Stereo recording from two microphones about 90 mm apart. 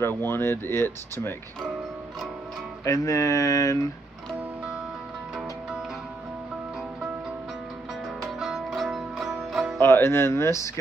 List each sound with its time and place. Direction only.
0.0 s speech: 25° left (ahead or behind)
2.8 s speech: 35° left (ahead or behind)
8.2 s music: 5° right (ahead or behind)
9.8 s speech: 25° left (ahead or behind)